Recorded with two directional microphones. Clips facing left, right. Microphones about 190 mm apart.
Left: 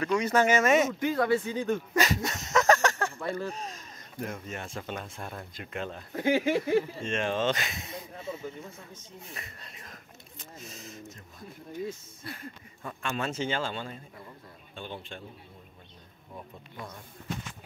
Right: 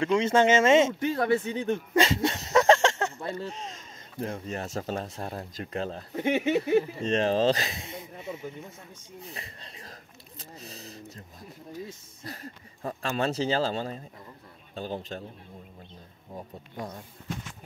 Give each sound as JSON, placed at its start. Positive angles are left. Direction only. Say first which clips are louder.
{"t": 0.0, "sound": "speech", "louder": "right 3 dB", "side_deg": -25}
{"t": 6.1, "sound": "speech", "louder": "even", "side_deg": -25}
{"t": 7.0, "sound": "speech", "louder": "right 5 dB", "side_deg": -35}
{"t": 9.2, "sound": "speech", "louder": "right 2 dB", "side_deg": -30}
{"t": 16.3, "sound": "speech", "louder": "right 5 dB", "side_deg": -35}